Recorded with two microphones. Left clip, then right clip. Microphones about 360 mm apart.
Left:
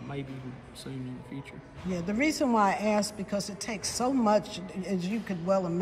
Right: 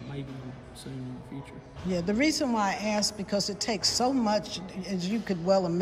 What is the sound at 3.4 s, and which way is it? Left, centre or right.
Speech, right.